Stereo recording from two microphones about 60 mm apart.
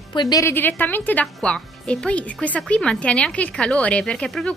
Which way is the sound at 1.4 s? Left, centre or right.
Centre.